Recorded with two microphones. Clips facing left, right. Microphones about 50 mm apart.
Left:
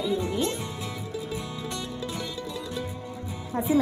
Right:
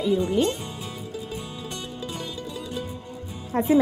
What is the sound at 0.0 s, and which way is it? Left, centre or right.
Speech, right.